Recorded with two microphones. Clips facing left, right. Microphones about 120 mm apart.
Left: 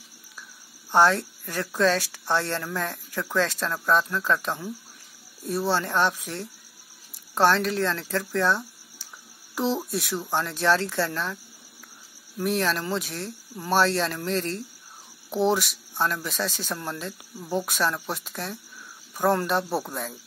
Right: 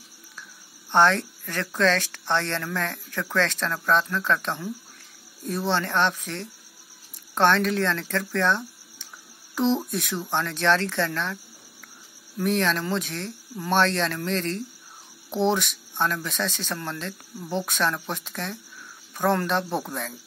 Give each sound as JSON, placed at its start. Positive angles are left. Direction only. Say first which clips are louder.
{"t": 0.9, "sound": "speech", "louder": "even", "side_deg": 5}
{"t": 12.4, "sound": "speech", "louder": "right 1 dB", "side_deg": 5}